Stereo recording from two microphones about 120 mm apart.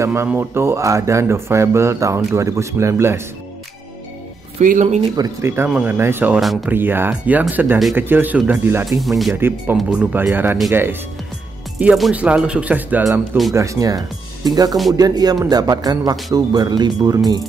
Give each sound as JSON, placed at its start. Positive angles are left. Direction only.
{"t": 0.0, "sound": "speech", "side_deg": -20}
{"t": 4.6, "sound": "speech", "side_deg": -70}
{"t": 5.1, "sound": "a man's voice", "side_deg": -30}
{"t": 5.7, "sound": "speech", "side_deg": -5}
{"t": 5.9, "sound": "speech", "side_deg": -20}
{"t": 6.4, "sound": "speech", "side_deg": 0}
{"t": 6.7, "sound": "speech", "side_deg": -15}
{"t": 9.0, "sound": "speech", "side_deg": 0}
{"t": 9.3, "sound": "speech", "side_deg": -20}
{"t": 9.8, "sound": "speech", "side_deg": -5}
{"t": 10.2, "sound": "speech", "side_deg": -15}
{"t": 11.9, "sound": "speech", "side_deg": -5}
{"t": 13.5, "sound": "a man's voice", "side_deg": -25}